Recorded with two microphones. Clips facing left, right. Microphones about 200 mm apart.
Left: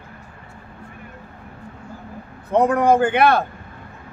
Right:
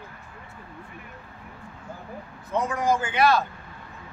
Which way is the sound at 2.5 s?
60° left (ahead or behind).